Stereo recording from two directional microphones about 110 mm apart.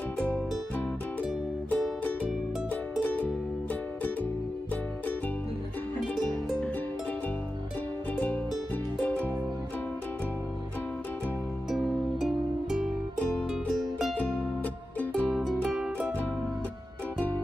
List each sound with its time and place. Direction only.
2.7 s music: 15° left (ahead or behind)
9.0 s music: 10° left (ahead or behind)
11.7 s music: centre (ahead or behind)
15.0 s music: 10° left (ahead or behind)